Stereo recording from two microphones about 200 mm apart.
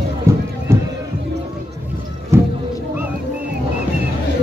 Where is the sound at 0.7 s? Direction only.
15° right (ahead or behind).